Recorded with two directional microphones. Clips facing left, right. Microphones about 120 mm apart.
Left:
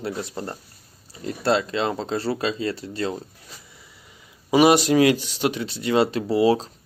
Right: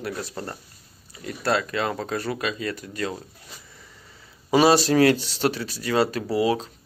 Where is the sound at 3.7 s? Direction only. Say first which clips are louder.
Right 1 dB; 10° left (ahead or behind).